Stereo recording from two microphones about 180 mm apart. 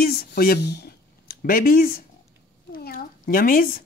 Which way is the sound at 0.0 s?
60° left (ahead or behind).